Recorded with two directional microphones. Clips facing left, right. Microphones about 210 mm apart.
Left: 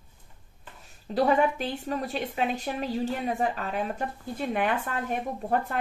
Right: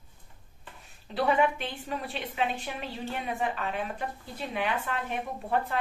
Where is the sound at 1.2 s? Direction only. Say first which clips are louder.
Left 3 dB; 40° left (ahead or behind).